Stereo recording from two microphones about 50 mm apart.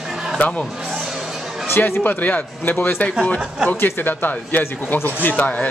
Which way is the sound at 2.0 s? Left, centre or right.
Left.